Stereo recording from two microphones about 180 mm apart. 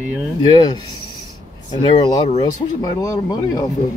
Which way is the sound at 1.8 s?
25° left (ahead or behind).